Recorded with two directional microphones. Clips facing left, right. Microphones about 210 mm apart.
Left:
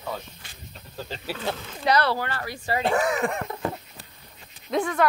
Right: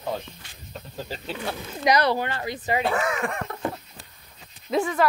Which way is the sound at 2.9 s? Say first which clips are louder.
Left 2 dB; 15° left (ahead or behind).